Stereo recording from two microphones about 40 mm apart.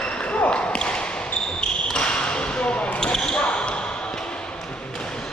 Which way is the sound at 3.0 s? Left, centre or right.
Centre.